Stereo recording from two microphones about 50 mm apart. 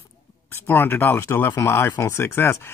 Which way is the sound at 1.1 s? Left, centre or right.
Left.